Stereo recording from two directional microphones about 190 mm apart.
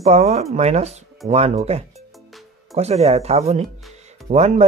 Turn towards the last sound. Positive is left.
turn(degrees=-35)  # may be behind; listen again after turning